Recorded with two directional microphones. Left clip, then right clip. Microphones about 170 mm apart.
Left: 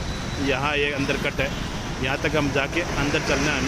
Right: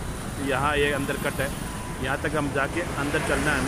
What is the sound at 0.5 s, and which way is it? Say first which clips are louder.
Speech: even; 10° left (ahead or behind).